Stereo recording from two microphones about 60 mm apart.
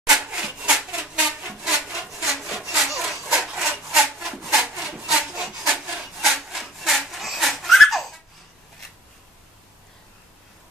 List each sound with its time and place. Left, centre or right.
0.1 s sawing: centre
0.9 s a sound: centre
2.2 s sawing: centre
3.9 s wood: centre
4.6 s sawing: centre
6.2 s sawing: centre
7.1 s laughter: centre